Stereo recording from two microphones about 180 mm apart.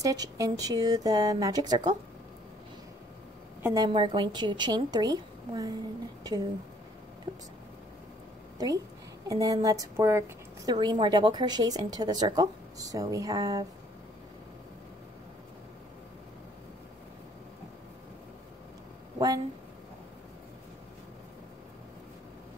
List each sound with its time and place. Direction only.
0.0 s speech: 20° right (ahead or behind)
3.6 s speech: 20° right (ahead or behind)
7.3 s speech: 25° right (ahead or behind)
8.5 s a woman's voice: 20° right (ahead or behind)
19.1 s a sound: 20° right (ahead or behind)